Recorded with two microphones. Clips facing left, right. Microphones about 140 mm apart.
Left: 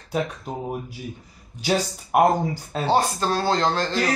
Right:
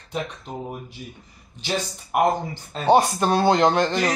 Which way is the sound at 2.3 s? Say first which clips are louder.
Left 4 dB; 10° left (ahead or behind).